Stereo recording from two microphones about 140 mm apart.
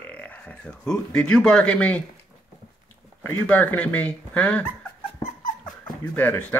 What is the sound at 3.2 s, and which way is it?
Speech, 15° left (ahead or behind).